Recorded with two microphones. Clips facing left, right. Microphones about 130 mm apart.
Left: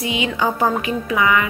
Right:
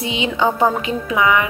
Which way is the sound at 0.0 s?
25° right (ahead or behind).